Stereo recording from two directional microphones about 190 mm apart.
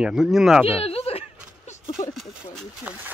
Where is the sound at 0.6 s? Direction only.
30° left (ahead or behind).